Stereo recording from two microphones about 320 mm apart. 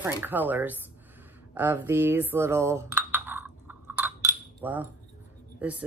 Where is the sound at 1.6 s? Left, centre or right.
Centre.